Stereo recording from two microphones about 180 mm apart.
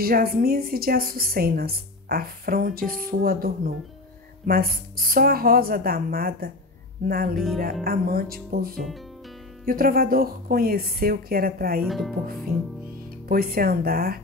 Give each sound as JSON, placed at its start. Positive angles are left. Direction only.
{"t": 0.0, "sound": "a woman's voice", "side_deg": -55}
{"t": 7.3, "sound": "speech", "side_deg": 0}
{"t": 7.8, "sound": "a woman's voice", "side_deg": -55}
{"t": 11.8, "sound": "speech", "side_deg": 0}
{"t": 13.3, "sound": "a woman's voice", "side_deg": -55}